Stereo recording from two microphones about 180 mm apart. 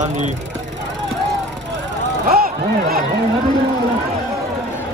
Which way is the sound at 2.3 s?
55° right (ahead or behind).